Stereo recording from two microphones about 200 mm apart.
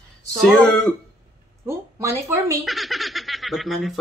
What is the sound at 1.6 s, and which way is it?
Speech, 15° right (ahead or behind).